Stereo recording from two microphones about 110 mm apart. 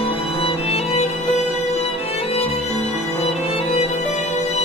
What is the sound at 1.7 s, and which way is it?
Music, 70° left (ahead or behind).